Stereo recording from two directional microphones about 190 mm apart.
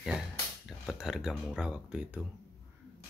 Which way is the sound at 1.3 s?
Centre (ahead or behind).